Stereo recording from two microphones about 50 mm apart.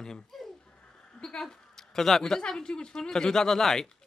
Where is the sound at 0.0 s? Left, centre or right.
Centre.